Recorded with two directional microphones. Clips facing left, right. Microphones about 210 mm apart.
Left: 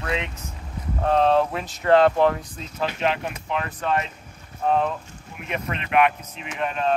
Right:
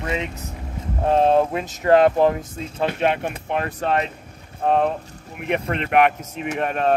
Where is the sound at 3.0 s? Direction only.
50° right (ahead or behind).